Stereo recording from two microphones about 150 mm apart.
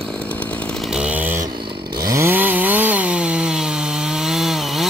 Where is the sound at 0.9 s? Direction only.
5° right (ahead or behind).